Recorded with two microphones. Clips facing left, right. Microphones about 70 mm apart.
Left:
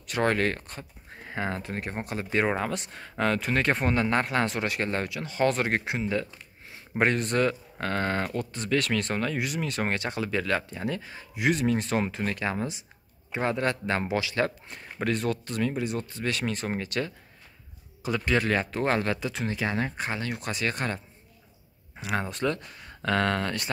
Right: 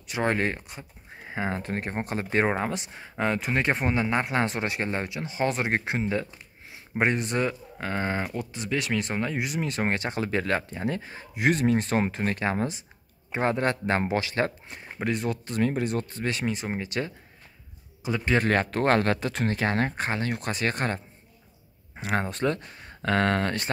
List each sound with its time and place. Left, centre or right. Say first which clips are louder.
0.0 s speech: left 1 dB; centre
1.6 s speech: right 3 dB; right
5.9 s speech: right 1 dB; right
14.7 s speech: even; centre
15.6 s speech: right 4 dB; right
18.4 s speech: right 3 dB; right
22.0 s speech: right 2 dB; right